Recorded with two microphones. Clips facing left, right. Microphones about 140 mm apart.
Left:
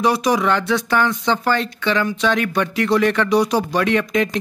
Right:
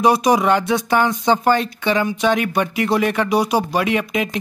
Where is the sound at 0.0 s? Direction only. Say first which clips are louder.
Right 2 dB; 20° right (ahead or behind).